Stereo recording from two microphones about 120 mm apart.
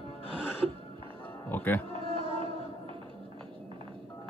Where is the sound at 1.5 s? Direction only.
15° left (ahead or behind).